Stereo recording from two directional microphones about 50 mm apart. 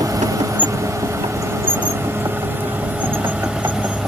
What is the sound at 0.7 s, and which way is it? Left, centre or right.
Vehicle, right.